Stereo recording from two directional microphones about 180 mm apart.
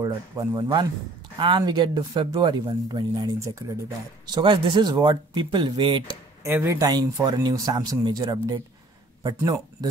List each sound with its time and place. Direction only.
0.0 s speech: 20° right (ahead or behind)
6.4 s speech: 15° right (ahead or behind)